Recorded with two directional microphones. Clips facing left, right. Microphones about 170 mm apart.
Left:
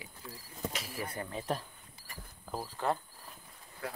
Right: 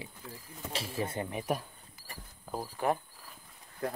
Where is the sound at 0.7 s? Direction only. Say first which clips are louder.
Right 5 dB; 25° right (ahead or behind).